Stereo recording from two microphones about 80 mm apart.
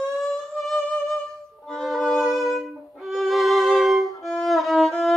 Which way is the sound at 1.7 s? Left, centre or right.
Centre.